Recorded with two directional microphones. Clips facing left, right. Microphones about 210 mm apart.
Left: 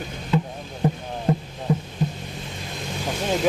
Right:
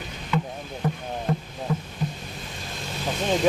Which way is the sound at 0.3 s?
35° left (ahead or behind).